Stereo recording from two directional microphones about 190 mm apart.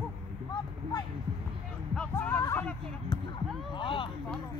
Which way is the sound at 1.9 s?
5° left (ahead or behind).